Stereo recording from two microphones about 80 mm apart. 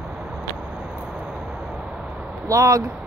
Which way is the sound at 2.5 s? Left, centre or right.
Right.